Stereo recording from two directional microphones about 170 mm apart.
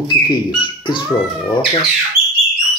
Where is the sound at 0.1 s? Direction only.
25° left (ahead or behind).